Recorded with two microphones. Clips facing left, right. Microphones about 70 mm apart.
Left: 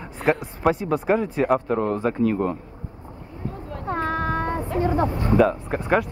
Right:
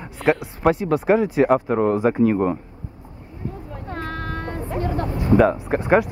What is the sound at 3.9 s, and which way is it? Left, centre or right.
Child singing, centre.